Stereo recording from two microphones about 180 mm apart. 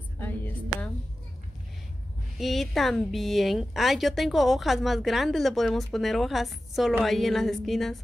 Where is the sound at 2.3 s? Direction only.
Centre (ahead or behind).